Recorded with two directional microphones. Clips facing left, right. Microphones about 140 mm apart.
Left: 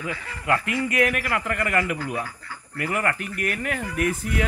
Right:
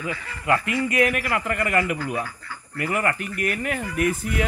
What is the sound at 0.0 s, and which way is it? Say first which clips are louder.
Speech: right 1 dB; 15° right (ahead or behind).